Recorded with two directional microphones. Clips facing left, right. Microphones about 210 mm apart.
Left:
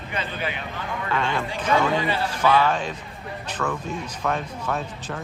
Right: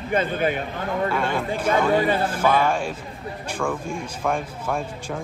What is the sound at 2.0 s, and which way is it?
Speech, 50° right (ahead or behind).